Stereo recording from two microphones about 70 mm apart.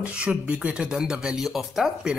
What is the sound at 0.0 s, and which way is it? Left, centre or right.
Speech, centre.